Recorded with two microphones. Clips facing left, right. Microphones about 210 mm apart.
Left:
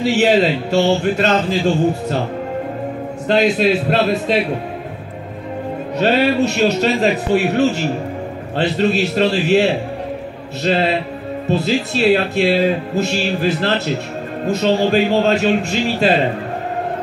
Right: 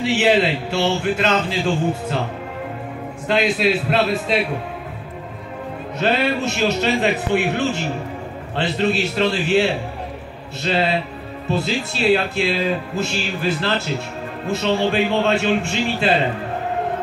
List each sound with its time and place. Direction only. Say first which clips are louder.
0.0 s speech: left 3 dB; 40° left (ahead or behind)
3.3 s speech: left 4 dB; 40° left (ahead or behind)
5.9 s speech: left 5 dB; 40° left (ahead or behind)